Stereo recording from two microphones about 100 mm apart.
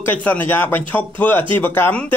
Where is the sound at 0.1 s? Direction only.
15° left (ahead or behind).